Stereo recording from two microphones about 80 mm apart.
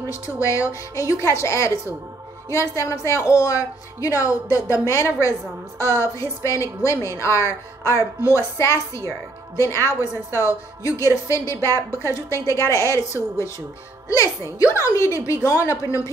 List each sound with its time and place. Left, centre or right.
0.1 s a woman's voice: left
2.7 s a woman's voice: left